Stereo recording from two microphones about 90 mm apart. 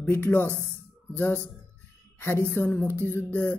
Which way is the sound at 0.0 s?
20° left (ahead or behind).